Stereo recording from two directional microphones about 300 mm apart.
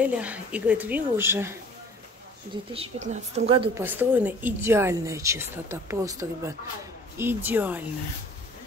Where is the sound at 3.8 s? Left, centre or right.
Centre.